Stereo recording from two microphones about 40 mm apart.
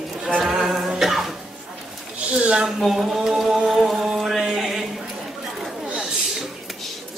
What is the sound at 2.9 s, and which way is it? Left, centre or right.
Music, centre.